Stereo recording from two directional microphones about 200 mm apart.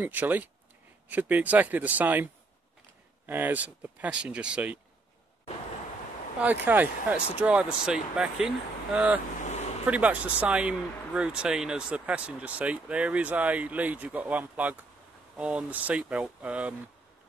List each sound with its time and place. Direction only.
0.0 s speech: 10° right (ahead or behind)
3.3 s speech: 10° right (ahead or behind)
6.4 s speech: 10° right (ahead or behind)
9.4 s vehicle: 35° left (ahead or behind)
9.8 s speech: 5° right (ahead or behind)